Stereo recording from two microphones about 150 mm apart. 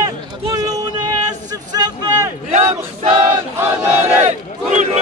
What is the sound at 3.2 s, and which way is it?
Choir, 20° right (ahead or behind).